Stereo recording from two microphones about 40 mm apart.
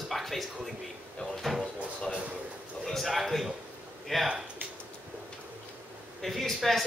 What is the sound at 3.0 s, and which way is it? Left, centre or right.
A man's voice, centre.